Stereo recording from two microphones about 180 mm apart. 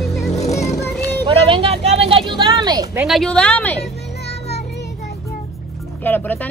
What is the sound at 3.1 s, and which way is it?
Speech, 5° left (ahead or behind).